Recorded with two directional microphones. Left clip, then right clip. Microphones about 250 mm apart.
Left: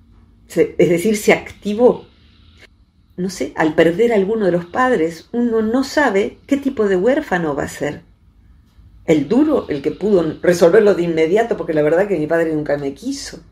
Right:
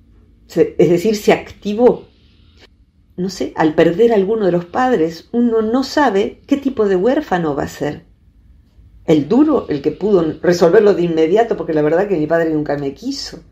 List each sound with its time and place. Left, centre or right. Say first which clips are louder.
0.5 s speech: right 2 dB; right
3.2 s speech: right 2 dB; centre
9.0 s speech: right 2 dB; right